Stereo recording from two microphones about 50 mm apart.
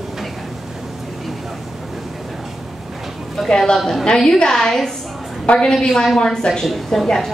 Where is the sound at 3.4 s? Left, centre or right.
Centre.